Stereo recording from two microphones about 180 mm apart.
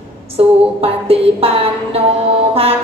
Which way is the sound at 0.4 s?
30° right (ahead or behind).